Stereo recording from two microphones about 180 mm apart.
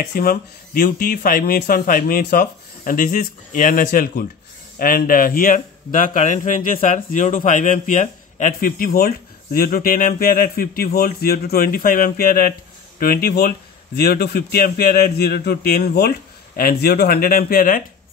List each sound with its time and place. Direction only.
0.1 s a man's voice: 55° left (ahead or behind)